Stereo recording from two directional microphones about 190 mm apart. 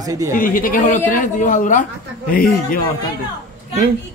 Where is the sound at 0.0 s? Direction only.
20° right (ahead or behind).